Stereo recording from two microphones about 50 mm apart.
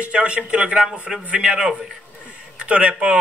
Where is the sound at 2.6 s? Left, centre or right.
Right.